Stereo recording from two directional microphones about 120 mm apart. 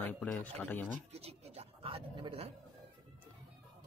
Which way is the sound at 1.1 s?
60° right (ahead or behind).